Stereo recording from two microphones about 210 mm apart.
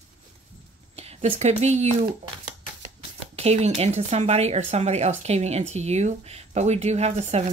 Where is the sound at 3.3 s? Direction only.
30° right (ahead or behind).